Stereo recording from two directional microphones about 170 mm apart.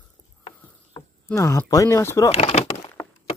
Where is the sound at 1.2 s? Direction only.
15° left (ahead or behind).